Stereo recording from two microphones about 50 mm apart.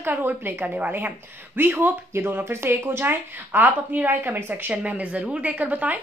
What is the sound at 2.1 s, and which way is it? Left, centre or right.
Speech, right.